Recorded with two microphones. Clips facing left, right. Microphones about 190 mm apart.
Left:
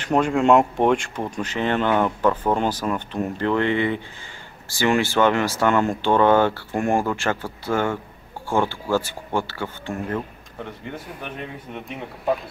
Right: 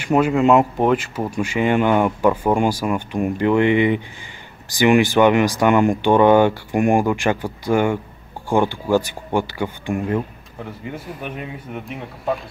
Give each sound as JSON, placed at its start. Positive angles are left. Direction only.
{"t": 0.0, "sound": "speech", "side_deg": -5}
{"t": 10.6, "sound": "speech", "side_deg": -5}